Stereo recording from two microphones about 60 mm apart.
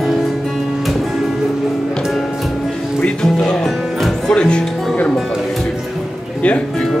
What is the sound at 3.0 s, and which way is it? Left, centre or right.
Music, centre.